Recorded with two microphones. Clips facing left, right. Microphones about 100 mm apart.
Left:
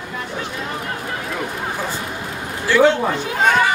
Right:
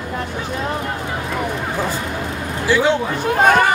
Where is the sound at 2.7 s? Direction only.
15° right (ahead or behind).